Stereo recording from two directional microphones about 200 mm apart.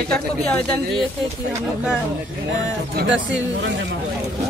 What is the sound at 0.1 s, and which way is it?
Speech, 5° left (ahead or behind).